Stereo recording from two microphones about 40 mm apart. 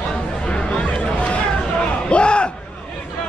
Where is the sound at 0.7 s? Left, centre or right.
Left.